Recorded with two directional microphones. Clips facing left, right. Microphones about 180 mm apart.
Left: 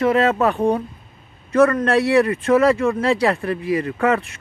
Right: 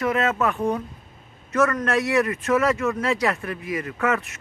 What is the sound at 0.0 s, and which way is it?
Speech, 30° left (ahead or behind).